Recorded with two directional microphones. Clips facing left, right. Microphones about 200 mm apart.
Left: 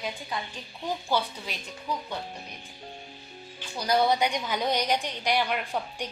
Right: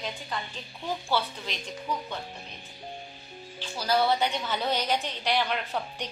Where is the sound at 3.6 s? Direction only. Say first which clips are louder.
Left 1 dB; 15° left (ahead or behind).